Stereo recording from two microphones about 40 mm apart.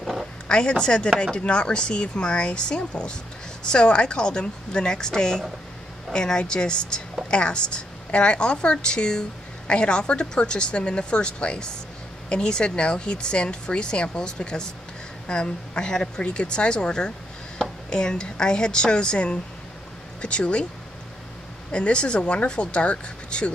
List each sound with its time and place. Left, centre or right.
0.5 s a woman's voice: left
21.7 s speech: left